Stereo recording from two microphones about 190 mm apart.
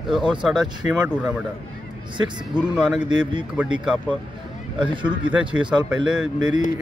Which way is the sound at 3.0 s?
25° right (ahead or behind).